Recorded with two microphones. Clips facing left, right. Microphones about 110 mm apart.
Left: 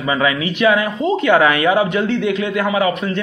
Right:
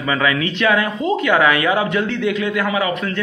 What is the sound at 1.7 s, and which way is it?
A man's voice, 20° left (ahead or behind).